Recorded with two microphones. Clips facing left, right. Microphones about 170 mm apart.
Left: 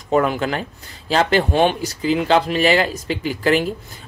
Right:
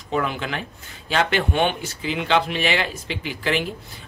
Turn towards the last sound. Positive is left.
turn(degrees=40)  # may be behind; listen again after turning